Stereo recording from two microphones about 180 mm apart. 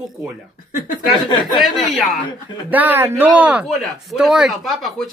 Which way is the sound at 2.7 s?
10° right (ahead or behind).